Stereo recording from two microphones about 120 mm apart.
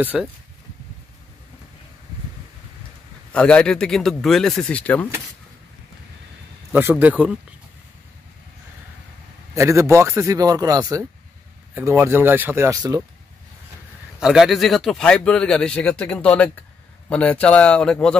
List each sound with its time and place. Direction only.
0.1 s speech: 5° right (ahead or behind)
3.3 s speech: 10° left (ahead or behind)
6.7 s speech: 15° right (ahead or behind)
9.6 s a man's voice: 25° right (ahead or behind)
12.9 s speech: 30° right (ahead or behind)
14.2 s speech: 5° right (ahead or behind)